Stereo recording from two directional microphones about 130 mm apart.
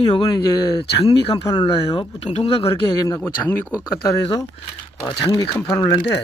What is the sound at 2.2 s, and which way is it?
Speech, 55° left (ahead or behind).